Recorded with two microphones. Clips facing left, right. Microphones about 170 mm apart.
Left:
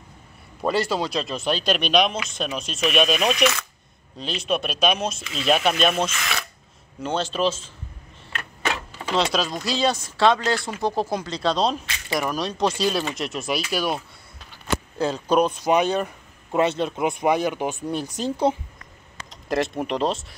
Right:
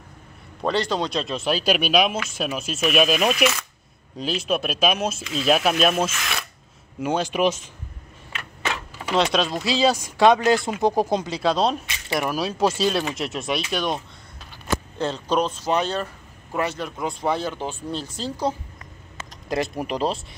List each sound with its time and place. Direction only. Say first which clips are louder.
0.6 s speech: even; 5° left (ahead or behind); by 7.7 s 15° right (ahead or behind)
8.9 s speech: right 3 dB; 5° right (ahead or behind)
11.3 s speech: left 1 dB; 5° right (ahead or behind); by 18.6 s 25° left (ahead or behind)
19.5 s speech: left 1 dB; centre (ahead or behind)